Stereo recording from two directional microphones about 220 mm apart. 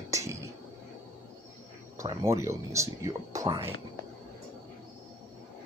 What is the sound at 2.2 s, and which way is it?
Speech, 15° right (ahead or behind).